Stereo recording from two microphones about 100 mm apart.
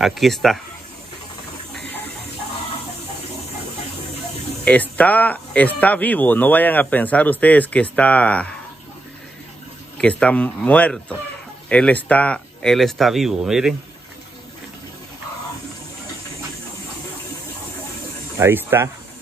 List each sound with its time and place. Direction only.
0.0 s speech: centre (ahead or behind)
4.6 s speech: 15° left (ahead or behind)
9.9 s speech: 10° left (ahead or behind)
12.6 s speech: centre (ahead or behind)
18.4 s speech: 20° right (ahead or behind)